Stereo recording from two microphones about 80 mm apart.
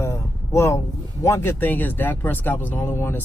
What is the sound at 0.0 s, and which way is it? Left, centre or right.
Speech, left.